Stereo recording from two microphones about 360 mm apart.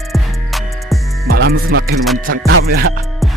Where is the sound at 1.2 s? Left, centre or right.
Right.